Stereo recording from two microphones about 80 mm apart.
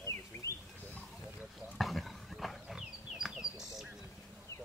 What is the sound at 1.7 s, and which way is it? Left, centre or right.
Livestock, centre.